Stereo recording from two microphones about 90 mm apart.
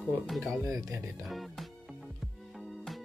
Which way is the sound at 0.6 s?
40° right (ahead or behind).